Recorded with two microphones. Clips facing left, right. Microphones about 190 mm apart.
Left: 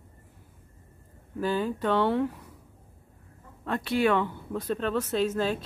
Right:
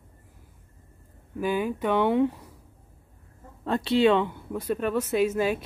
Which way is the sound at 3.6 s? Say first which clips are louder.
Right 4 dB; 30° right (ahead or behind).